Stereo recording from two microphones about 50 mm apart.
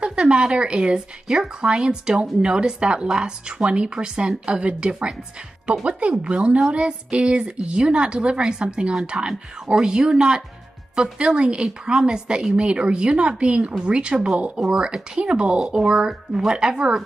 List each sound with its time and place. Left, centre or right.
0.0 s a woman's voice: right